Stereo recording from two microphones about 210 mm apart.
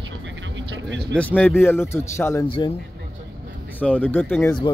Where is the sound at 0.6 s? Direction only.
60° right (ahead or behind).